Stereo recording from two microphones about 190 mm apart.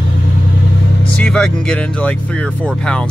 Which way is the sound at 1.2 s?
5° left (ahead or behind).